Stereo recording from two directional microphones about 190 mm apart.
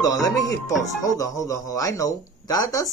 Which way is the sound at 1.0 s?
15° left (ahead or behind).